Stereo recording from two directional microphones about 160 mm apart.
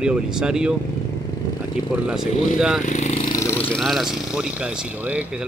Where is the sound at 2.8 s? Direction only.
50° left (ahead or behind).